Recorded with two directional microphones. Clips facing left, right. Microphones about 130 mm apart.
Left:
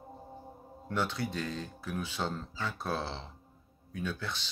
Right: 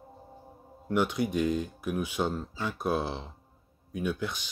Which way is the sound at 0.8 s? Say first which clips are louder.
Right 6 dB; 15° right (ahead or behind).